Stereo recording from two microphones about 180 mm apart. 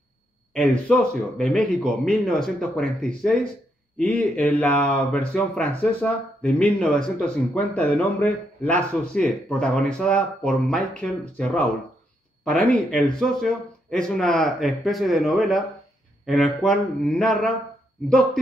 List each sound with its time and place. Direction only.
0.6 s speech: 5° left (ahead or behind)